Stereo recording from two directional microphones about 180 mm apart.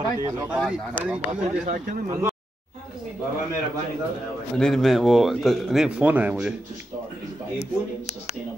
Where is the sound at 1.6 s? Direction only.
50° right (ahead or behind).